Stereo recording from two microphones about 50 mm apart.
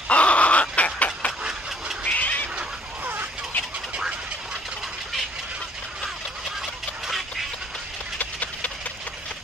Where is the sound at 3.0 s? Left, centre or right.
Right.